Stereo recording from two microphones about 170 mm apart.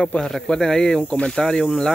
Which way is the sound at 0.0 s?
5° left (ahead or behind).